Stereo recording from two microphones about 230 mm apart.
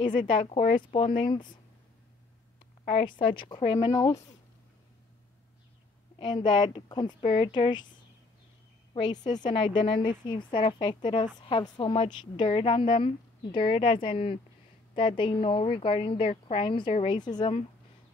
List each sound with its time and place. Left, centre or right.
0.0 s a woman's voice: centre
2.8 s a woman's voice: left
6.1 s a woman's voice: centre
8.9 s a woman's voice: centre